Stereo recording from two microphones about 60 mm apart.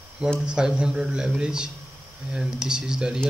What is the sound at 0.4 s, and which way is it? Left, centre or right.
Speech, centre.